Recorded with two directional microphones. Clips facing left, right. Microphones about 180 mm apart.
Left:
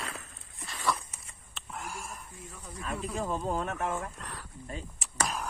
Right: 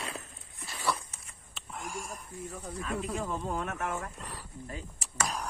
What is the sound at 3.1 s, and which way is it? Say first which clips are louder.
Speech: left 2 dB; 35° left (ahead or behind).